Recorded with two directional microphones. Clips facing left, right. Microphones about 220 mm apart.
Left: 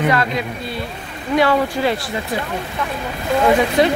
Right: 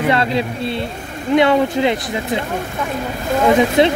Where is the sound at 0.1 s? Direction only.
30° right (ahead or behind).